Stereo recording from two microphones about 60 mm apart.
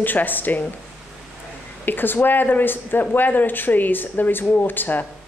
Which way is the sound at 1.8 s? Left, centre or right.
Left.